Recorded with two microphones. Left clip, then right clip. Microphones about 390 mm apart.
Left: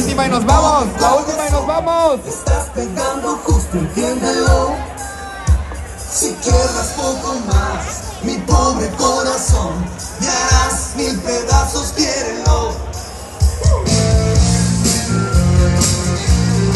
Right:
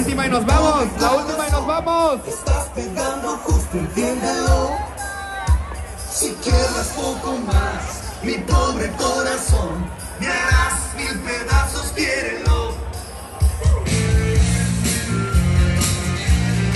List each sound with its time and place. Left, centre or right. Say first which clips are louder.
0.0 s music: left 4 dB; centre
6.1 s music: left 5 dB; centre